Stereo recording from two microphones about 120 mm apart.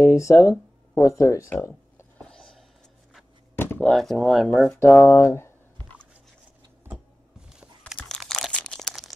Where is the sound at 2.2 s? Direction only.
5° left (ahead or behind).